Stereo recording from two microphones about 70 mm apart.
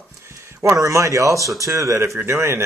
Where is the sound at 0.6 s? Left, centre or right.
Right.